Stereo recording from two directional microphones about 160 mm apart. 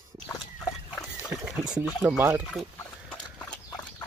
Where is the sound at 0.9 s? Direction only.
Centre (ahead or behind).